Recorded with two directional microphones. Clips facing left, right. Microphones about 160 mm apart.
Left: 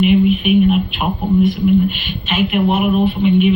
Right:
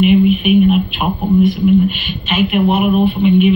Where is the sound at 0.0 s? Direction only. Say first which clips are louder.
Right 2 dB; 15° right (ahead or behind).